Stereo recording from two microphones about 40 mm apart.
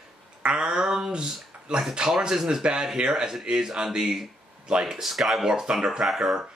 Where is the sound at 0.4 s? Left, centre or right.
Right.